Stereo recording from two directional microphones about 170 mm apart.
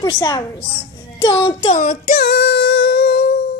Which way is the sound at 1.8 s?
55° left (ahead or behind).